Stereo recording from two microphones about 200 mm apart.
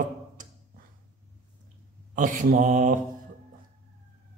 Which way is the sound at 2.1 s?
40° right (ahead or behind).